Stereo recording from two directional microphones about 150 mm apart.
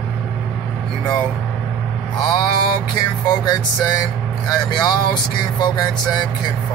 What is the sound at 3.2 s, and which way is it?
Speech, 25° left (ahead or behind).